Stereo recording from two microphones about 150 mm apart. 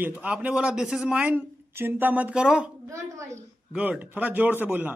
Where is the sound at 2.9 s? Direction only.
20° right (ahead or behind).